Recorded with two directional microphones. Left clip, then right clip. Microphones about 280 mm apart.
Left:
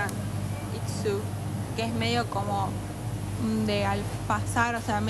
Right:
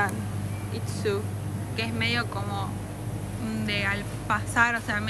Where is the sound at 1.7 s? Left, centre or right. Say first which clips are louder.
Right 1 dB; centre.